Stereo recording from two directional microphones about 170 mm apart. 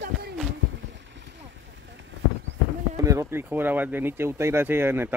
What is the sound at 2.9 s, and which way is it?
Speech, 20° right (ahead or behind).